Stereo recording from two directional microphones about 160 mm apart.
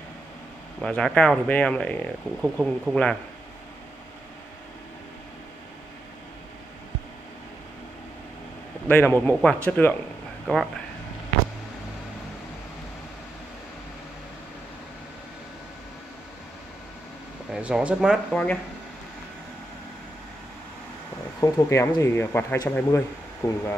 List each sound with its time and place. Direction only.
0.7 s speech: 5° left (ahead or behind)
8.8 s speech: 10° left (ahead or behind)
10.4 s speech: centre (ahead or behind)
17.5 s speech: 5° right (ahead or behind)
21.4 s speech: 20° left (ahead or behind)